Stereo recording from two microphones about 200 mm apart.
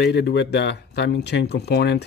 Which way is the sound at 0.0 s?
55° left (ahead or behind).